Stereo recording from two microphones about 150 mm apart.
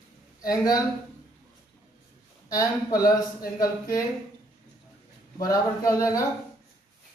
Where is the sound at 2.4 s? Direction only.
25° left (ahead or behind).